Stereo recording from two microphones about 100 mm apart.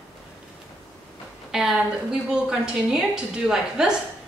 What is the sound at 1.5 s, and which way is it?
A woman's voice, 5° right (ahead or behind).